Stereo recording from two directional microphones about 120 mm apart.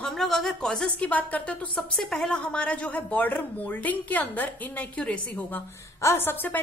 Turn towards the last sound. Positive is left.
turn(degrees=15)  # may be behind; listen again after turning